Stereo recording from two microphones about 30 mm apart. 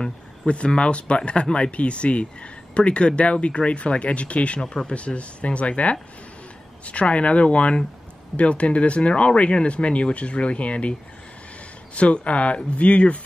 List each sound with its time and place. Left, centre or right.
0.0 s speech: left
4.6 s speech: left
4.9 s speech: left